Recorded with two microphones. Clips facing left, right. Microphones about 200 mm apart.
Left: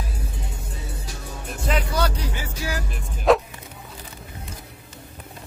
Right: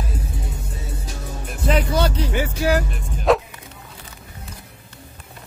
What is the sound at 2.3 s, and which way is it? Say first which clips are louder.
Music: right 10 dB; 60° right (ahead or behind).